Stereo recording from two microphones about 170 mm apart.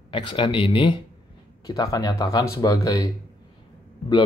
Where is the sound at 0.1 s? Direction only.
30° left (ahead or behind).